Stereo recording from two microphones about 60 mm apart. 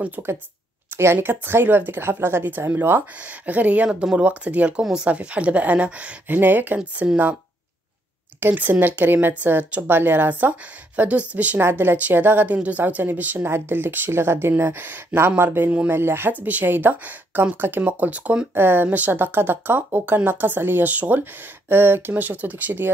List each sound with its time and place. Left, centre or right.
0.9 s speech: right
3.4 s speech: right
8.4 s speech: right
11.7 s speech: right
18.5 s speech: right